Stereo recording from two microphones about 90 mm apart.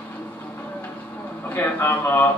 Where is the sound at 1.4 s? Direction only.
20° left (ahead or behind).